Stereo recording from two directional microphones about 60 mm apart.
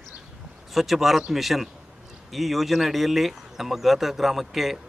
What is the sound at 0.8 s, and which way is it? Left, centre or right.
Speech, centre.